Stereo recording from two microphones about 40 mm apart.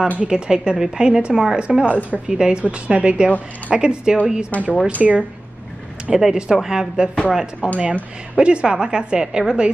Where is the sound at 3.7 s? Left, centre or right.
Right.